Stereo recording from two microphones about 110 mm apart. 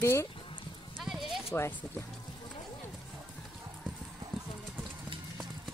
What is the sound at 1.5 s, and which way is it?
Speech, 25° left (ahead or behind).